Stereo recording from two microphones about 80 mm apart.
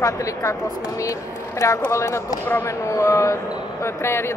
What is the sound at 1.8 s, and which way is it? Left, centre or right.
A man's voice, left.